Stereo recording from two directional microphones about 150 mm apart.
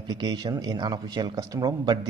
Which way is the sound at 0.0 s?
30° right (ahead or behind).